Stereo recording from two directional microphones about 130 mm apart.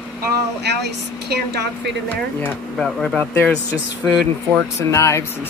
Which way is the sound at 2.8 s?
5° left (ahead or behind).